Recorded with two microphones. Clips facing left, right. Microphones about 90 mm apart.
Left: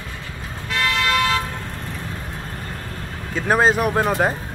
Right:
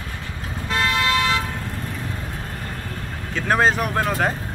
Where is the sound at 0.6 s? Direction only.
20° right (ahead or behind).